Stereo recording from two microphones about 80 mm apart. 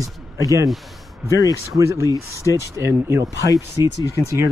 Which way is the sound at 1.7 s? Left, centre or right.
Right.